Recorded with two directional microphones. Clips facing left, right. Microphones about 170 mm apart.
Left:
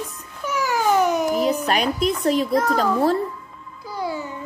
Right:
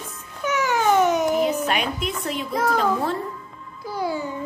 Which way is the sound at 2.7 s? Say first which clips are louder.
Left 3 dB; 40° left (ahead or behind).